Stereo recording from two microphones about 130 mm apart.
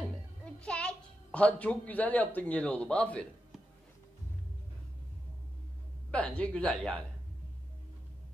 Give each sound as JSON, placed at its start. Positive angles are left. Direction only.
{"t": 0.6, "sound": "a child's voice", "side_deg": 10}
{"t": 6.1, "sound": "speech", "side_deg": 10}